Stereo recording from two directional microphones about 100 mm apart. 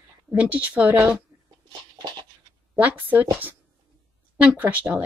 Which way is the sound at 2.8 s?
15° right (ahead or behind).